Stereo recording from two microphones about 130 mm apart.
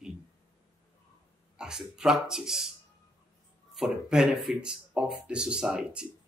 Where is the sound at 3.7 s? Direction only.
5° right (ahead or behind).